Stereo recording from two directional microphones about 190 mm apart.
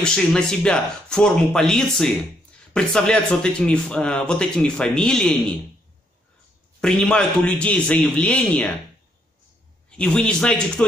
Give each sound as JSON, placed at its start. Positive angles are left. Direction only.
{"t": 0.0, "sound": "speech", "side_deg": 5}
{"t": 6.8, "sound": "speech", "side_deg": 5}
{"t": 9.8, "sound": "speech", "side_deg": 5}